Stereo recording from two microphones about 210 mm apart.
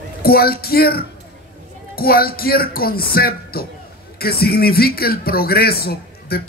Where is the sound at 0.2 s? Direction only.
45° left (ahead or behind).